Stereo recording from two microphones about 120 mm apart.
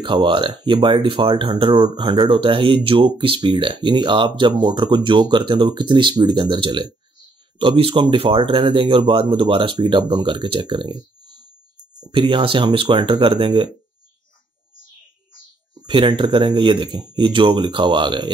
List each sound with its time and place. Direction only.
0.0 s speech: 40° right (ahead or behind)
12.1 s speech: 45° right (ahead or behind)
15.9 s speech: 45° right (ahead or behind)